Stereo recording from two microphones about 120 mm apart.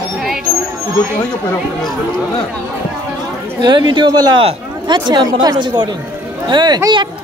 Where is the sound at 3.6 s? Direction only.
40° right (ahead or behind).